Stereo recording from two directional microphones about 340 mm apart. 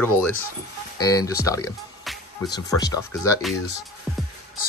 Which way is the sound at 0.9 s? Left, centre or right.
Centre.